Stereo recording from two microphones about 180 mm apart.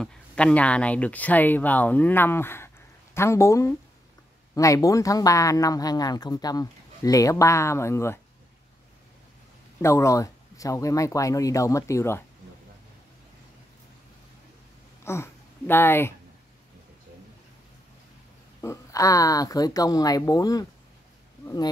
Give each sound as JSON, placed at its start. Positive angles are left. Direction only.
{"t": 0.0, "sound": "speech", "side_deg": 5}
{"t": 9.8, "sound": "speech", "side_deg": 15}
{"t": 15.0, "sound": "speech", "side_deg": 15}
{"t": 18.6, "sound": "speech", "side_deg": 15}